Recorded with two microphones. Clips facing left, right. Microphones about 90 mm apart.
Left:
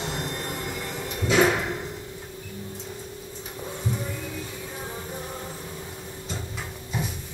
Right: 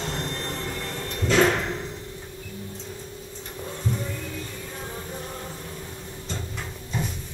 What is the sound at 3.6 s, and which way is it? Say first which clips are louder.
Music: right 1 dB; 5° left (ahead or behind).